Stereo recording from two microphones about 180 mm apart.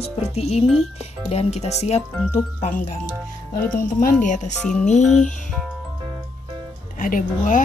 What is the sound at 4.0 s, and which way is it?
Speech, 40° left (ahead or behind).